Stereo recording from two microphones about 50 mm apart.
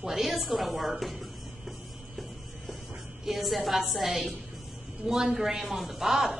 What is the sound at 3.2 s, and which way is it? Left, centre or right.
A woman's voice, centre.